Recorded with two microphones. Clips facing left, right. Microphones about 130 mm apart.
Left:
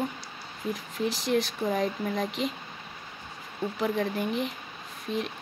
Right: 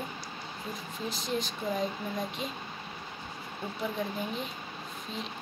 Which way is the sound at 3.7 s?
70° left (ahead or behind).